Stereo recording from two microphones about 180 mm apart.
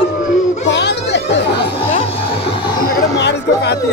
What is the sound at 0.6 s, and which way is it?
Children playing, 75° left (ahead or behind).